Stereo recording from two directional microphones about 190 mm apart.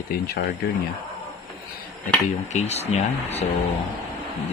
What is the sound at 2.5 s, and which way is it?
Speech, 35° left (ahead or behind).